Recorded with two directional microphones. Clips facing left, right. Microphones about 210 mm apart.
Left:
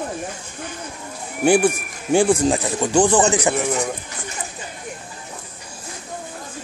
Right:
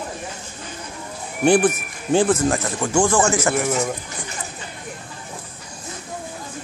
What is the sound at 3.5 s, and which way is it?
Speech, centre (ahead or behind).